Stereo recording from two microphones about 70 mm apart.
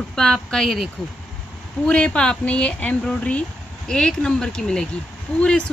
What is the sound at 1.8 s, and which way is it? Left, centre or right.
Speech, centre.